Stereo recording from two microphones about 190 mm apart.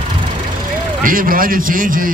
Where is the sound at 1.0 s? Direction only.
45° right (ahead or behind).